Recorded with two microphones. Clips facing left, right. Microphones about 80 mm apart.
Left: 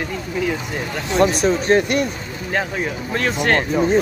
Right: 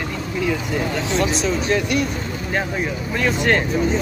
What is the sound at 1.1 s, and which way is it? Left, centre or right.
Speech, left.